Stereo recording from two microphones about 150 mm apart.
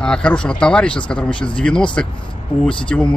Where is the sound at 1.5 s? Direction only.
5° left (ahead or behind).